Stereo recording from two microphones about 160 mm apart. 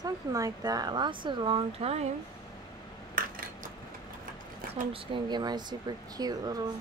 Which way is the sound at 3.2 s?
60° right (ahead or behind).